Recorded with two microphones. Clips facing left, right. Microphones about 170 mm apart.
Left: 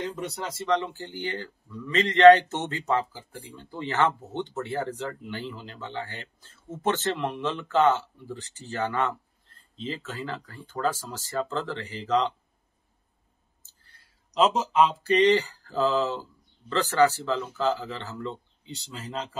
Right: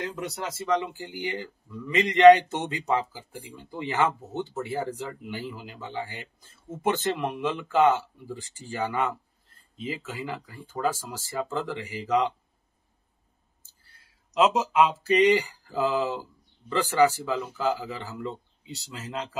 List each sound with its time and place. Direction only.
0.0 s speech: 10° right (ahead or behind)
14.3 s speech: 5° right (ahead or behind)